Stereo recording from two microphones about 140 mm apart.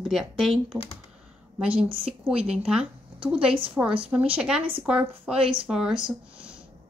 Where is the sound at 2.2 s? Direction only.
5° right (ahead or behind).